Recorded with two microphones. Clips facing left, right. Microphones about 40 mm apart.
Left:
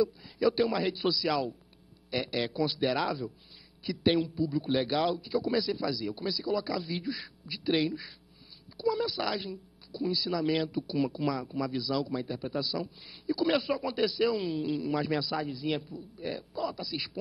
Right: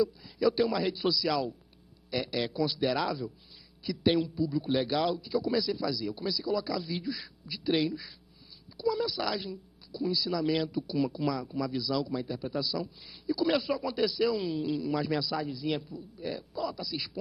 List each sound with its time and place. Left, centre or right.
0.0 s a man's voice: centre